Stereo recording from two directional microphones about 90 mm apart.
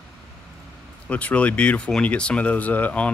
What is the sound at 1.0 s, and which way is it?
Speech, 15° left (ahead or behind).